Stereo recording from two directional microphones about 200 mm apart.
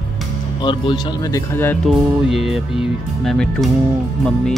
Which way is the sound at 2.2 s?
Centre (ahead or behind).